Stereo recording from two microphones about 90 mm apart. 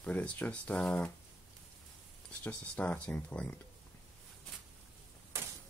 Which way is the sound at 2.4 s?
15° left (ahead or behind).